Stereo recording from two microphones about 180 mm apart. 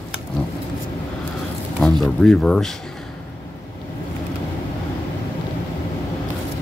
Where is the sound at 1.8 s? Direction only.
Centre (ahead or behind).